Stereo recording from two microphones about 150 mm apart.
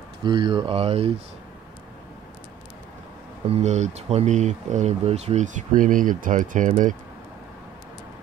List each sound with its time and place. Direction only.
0.2 s speech: 30° right (ahead or behind)
3.4 s speech: 45° right (ahead or behind)